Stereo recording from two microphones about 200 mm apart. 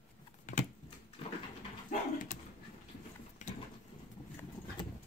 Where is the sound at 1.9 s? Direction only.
40° left (ahead or behind).